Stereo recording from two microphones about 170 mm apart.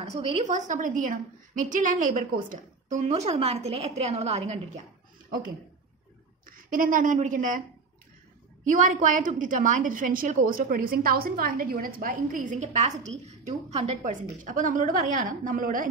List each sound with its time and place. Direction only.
0.0 s a woman's voice: 45° right (ahead or behind)
6.4 s a woman's voice: 55° right (ahead or behind)
8.6 s a woman's voice: 50° right (ahead or behind)